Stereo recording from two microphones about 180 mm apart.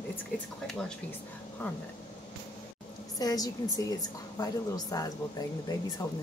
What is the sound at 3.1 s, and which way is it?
A woman's voice, 20° left (ahead or behind).